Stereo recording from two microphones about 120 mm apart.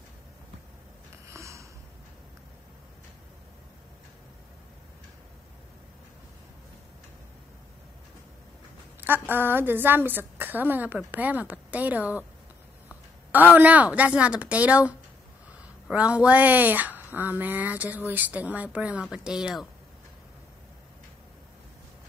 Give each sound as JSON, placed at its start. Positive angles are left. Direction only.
{"t": 1.2, "sound": "sniff", "side_deg": -25}
{"t": 9.0, "sound": "a woman's voice", "side_deg": -15}